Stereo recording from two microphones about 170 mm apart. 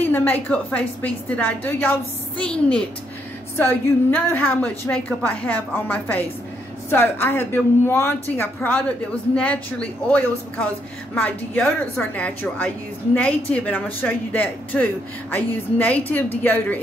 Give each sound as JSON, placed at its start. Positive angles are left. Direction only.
{"t": 0.0, "sound": "a woman's voice", "side_deg": 10}